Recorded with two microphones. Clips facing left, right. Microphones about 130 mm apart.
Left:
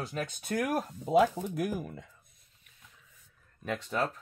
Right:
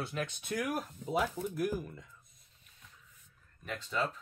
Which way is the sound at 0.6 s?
75° left (ahead or behind).